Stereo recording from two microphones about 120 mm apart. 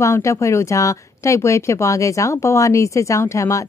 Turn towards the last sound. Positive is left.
turn(degrees=25)  # may be behind; listen again after turning